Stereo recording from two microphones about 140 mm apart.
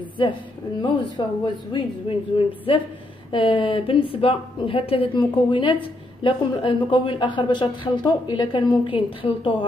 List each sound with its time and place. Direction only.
0.8 s speech: 35° left (ahead or behind)